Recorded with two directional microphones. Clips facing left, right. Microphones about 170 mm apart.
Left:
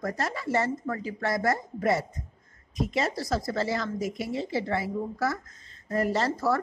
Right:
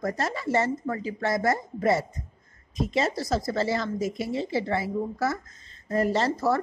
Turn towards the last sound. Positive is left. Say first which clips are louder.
# right 2 dB
turn(degrees=-20)  # may be behind; listen again after turning